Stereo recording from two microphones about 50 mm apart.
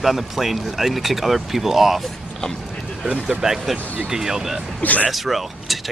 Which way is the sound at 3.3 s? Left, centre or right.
Centre.